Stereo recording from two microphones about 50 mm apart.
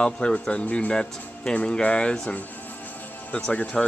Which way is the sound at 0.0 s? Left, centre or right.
Centre.